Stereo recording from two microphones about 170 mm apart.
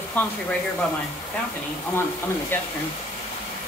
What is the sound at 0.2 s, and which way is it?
Speech, 10° left (ahead or behind).